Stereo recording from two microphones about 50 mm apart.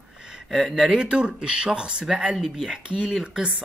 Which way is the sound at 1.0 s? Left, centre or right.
Centre.